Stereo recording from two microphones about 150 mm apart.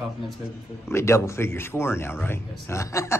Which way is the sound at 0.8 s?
20° left (ahead or behind).